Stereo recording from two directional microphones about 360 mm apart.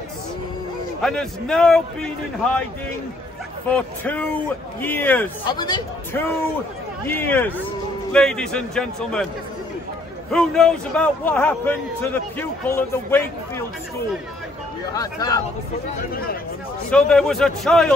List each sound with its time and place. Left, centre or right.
1.0 s a man's voice: centre
3.7 s a man's voice: centre
10.3 s a man's voice: centre
15.0 s speech: centre
16.1 s speech: left
16.9 s a man's voice: centre